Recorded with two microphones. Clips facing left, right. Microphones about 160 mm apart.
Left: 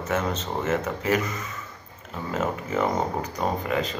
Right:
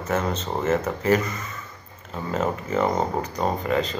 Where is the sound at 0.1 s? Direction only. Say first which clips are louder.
Right 2 dB; centre (ahead or behind).